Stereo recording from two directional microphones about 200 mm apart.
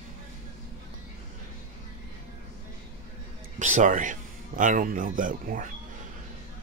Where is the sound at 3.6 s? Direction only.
40° right (ahead or behind).